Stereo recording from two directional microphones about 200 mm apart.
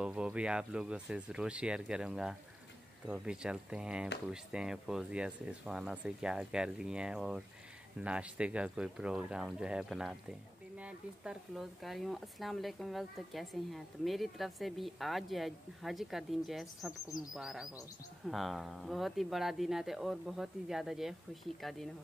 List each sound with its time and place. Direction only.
0.0 s speech: 5° right (ahead or behind)